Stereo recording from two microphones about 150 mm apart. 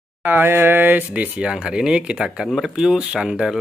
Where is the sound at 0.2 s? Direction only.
15° right (ahead or behind).